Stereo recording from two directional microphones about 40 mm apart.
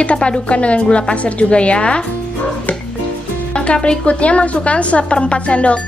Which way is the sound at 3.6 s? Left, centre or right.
Left.